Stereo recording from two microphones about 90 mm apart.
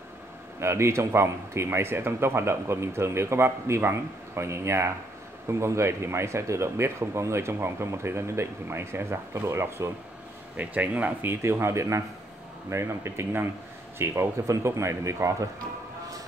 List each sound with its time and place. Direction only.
0.6 s a man's voice: 30° right (ahead or behind)
10.5 s speech: 15° right (ahead or behind)
11.1 s a man's voice: 25° right (ahead or behind)